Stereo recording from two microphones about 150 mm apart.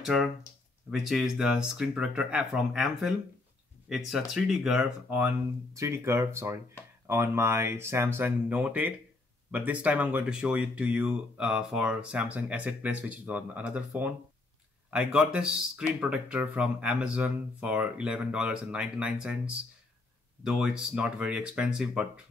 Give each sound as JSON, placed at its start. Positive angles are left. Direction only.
{"t": 0.0, "sound": "speech", "side_deg": -5}
{"t": 5.7, "sound": "speech", "side_deg": -20}
{"t": 20.4, "sound": "speech", "side_deg": -5}